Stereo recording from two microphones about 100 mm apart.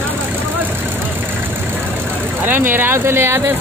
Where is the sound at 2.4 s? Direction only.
20° right (ahead or behind).